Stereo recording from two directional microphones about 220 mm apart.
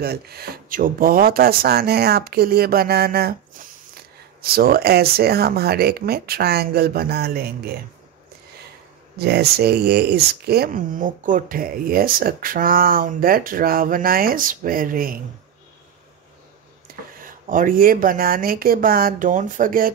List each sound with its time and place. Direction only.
0.0 s speech: 45° right (ahead or behind)
9.2 s speech: 45° right (ahead or behind)
16.8 s speech: 40° right (ahead or behind)